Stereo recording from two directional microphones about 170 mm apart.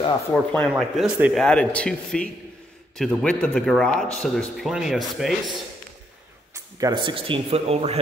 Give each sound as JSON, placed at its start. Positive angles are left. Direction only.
{"t": 0.3, "sound": "speech", "side_deg": 5}
{"t": 1.4, "sound": "speech", "side_deg": 5}
{"t": 6.5, "sound": "speech", "side_deg": -20}